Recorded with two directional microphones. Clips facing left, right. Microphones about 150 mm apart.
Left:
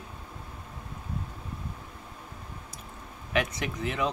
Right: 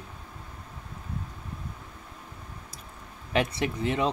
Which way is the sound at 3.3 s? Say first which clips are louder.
Right 3 dB; 30° right (ahead or behind).